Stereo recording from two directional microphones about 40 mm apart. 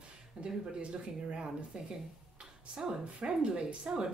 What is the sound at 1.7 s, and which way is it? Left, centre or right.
Speech, right.